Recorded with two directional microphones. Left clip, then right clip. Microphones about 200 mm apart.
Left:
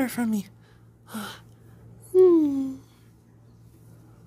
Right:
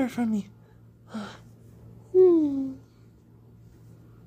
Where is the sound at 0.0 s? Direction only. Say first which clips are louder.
Left 1 dB; centre (ahead or behind).